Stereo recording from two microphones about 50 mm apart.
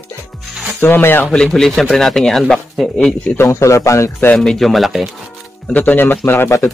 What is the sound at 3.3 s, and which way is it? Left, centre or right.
Speech, left.